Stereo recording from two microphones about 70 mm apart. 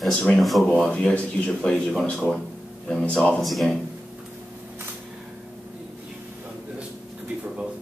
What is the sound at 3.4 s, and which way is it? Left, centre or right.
Speech, centre.